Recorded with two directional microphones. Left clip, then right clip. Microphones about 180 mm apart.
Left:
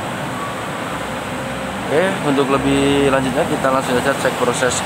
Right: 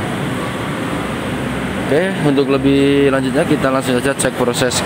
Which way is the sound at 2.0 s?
10° right (ahead or behind).